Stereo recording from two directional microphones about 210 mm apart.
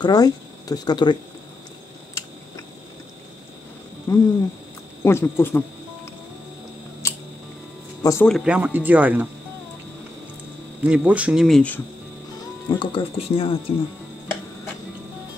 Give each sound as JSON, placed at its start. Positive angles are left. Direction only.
{"t": 0.0, "sound": "speech", "side_deg": 20}
{"t": 4.1, "sound": "speech", "side_deg": 15}
{"t": 7.0, "sound": "scissors", "side_deg": 15}
{"t": 8.0, "sound": "speech", "side_deg": 15}
{"t": 8.3, "sound": "speech", "side_deg": 0}
{"t": 10.8, "sound": "speech", "side_deg": -5}
{"t": 12.6, "sound": "speech", "side_deg": 25}